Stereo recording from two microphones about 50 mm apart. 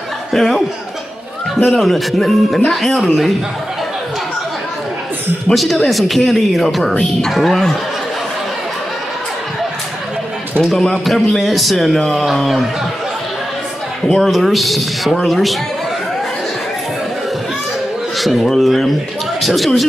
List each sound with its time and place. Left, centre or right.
0.3 s speech: centre
1.7 s speech: centre
5.5 s speech: centre
10.6 s speech: centre
14.0 s speech: centre
18.2 s speech: centre